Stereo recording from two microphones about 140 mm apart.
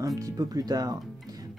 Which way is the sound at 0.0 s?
25° right (ahead or behind).